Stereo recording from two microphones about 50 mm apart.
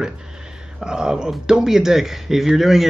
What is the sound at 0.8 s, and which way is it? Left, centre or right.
Speech, centre.